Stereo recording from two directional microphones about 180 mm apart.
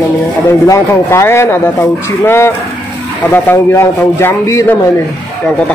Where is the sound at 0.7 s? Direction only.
15° left (ahead or behind).